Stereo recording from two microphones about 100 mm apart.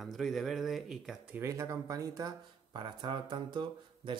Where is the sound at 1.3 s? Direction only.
30° right (ahead or behind).